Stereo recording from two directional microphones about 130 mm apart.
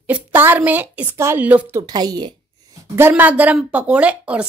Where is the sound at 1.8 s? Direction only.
30° right (ahead or behind).